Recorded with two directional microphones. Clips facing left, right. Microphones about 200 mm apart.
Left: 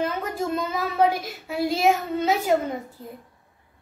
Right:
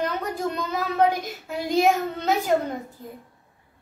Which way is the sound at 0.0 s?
5° left (ahead or behind).